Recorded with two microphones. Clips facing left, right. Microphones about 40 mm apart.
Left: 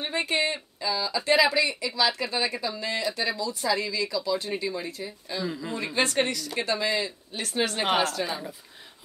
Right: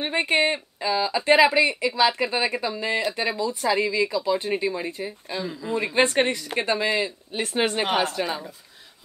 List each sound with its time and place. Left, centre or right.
0.0 s a woman's voice: right